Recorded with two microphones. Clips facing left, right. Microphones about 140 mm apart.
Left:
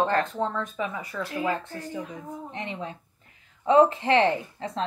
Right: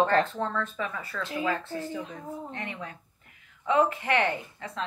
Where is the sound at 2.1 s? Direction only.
20° left (ahead or behind).